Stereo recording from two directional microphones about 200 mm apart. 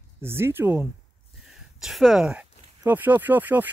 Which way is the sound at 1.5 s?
Centre (ahead or behind).